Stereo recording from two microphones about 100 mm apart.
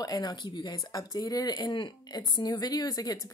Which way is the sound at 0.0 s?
40° left (ahead or behind).